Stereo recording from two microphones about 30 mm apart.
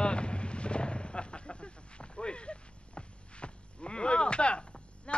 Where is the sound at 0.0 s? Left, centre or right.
Left.